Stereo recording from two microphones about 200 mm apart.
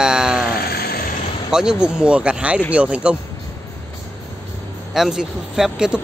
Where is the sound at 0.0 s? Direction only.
5° right (ahead or behind).